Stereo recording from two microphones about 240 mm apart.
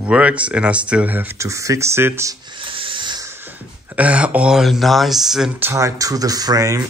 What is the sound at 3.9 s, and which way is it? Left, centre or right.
Speech, centre.